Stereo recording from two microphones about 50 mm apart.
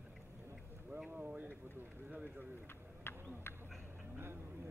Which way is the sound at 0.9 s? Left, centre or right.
Right.